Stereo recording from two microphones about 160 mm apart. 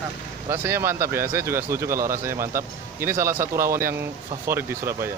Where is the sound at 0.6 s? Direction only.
15° right (ahead or behind).